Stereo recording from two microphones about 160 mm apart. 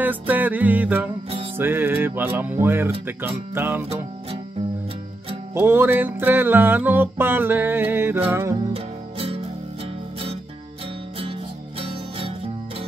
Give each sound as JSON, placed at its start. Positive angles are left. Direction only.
{"t": 0.0, "sound": "music", "side_deg": -10}
{"t": 3.9, "sound": "music", "side_deg": -40}
{"t": 5.5, "sound": "music", "side_deg": -15}
{"t": 8.7, "sound": "music", "side_deg": -40}